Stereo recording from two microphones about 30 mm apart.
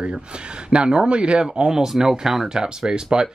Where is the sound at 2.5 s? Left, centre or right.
Right.